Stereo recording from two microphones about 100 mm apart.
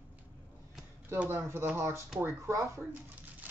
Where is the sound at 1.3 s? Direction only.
25° right (ahead or behind).